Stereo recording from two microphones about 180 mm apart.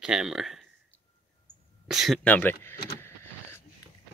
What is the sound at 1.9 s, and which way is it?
Speech, centre (ahead or behind).